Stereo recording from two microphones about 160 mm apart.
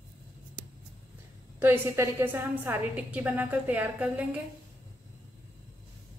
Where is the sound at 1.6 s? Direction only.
15° right (ahead or behind).